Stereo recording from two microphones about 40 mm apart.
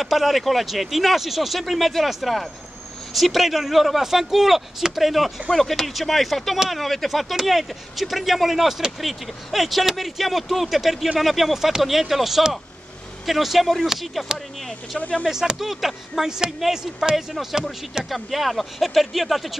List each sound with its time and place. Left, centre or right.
0.0 s speech: centre
15.0 s speech: left
15.2 s speech: centre